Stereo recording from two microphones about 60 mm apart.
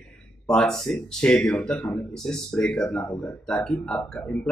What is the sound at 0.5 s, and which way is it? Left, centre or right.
Speech, centre.